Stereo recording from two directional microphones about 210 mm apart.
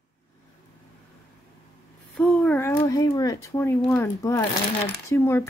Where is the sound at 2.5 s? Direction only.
15° left (ahead or behind).